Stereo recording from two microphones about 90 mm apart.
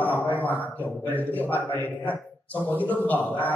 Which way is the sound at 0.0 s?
20° left (ahead or behind).